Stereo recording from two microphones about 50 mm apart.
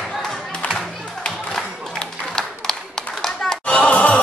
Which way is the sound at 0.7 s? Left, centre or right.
Centre.